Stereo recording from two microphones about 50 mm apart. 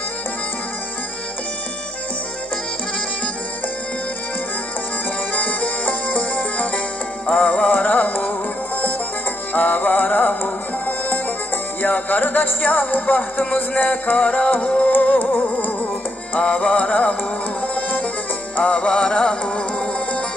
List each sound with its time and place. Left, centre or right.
5.3 s music: left
7.7 s music: left
9.5 s music: left
16.3 s music: left